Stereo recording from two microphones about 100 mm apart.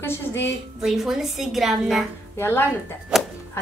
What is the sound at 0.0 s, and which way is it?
Speech, 25° left (ahead or behind).